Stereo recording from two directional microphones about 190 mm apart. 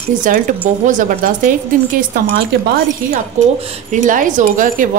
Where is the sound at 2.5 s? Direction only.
60° right (ahead or behind).